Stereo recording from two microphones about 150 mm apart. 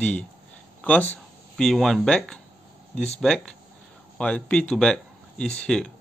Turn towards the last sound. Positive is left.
turn(degrees=5)  # may be behind; listen again after turning